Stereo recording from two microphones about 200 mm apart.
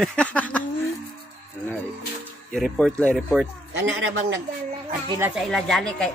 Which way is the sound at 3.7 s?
70° right (ahead or behind).